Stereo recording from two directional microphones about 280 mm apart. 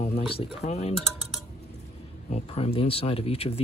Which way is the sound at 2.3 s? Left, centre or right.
Left.